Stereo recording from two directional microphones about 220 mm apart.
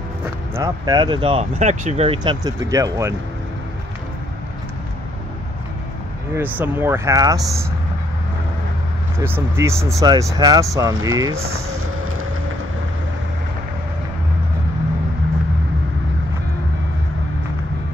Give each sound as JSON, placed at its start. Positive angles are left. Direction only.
{"t": 0.6, "sound": "speech", "side_deg": -15}
{"t": 6.3, "sound": "speech", "side_deg": -10}
{"t": 9.2, "sound": "speech", "side_deg": -10}